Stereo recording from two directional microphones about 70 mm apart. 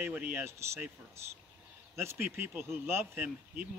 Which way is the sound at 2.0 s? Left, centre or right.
Right.